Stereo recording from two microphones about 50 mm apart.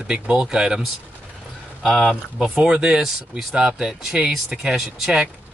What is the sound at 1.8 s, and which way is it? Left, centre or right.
Speech, centre.